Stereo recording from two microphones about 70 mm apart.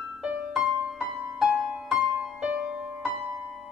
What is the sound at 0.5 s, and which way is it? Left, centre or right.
Music, centre.